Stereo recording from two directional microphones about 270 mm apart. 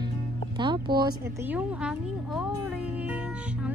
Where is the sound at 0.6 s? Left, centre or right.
Centre.